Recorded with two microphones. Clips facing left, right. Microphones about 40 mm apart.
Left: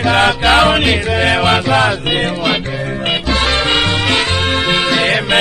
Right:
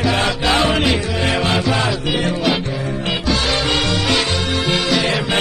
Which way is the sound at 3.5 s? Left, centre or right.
Left.